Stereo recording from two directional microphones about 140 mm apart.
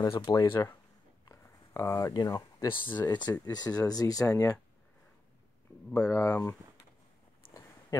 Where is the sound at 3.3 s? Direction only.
30° left (ahead or behind).